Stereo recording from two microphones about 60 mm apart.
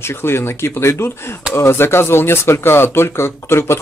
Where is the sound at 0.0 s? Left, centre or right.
Left.